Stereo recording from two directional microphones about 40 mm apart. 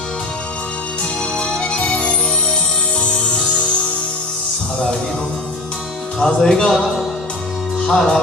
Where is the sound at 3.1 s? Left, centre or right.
Left.